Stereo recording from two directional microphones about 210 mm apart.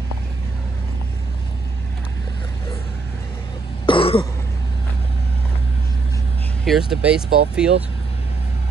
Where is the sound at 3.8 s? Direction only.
25° left (ahead or behind).